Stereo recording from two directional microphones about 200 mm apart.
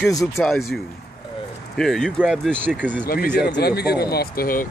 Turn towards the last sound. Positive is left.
turn(degrees=45)  # may be behind; listen again after turning